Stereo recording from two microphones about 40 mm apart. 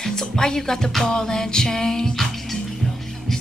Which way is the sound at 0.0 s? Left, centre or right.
Centre.